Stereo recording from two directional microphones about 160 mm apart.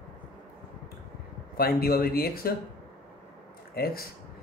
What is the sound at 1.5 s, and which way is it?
Speech, 70° left (ahead or behind).